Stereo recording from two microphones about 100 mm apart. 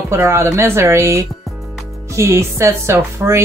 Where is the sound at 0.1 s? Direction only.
30° right (ahead or behind).